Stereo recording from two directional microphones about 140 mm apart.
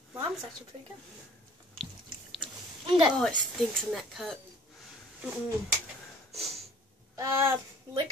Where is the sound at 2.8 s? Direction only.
40° right (ahead or behind).